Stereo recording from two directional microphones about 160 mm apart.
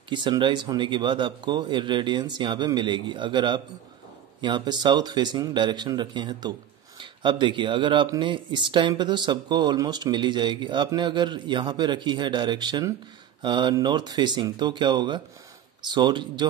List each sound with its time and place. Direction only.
0.1 s speech: 30° right (ahead or behind)